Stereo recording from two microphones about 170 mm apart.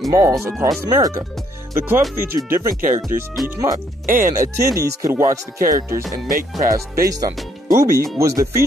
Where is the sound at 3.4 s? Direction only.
20° right (ahead or behind).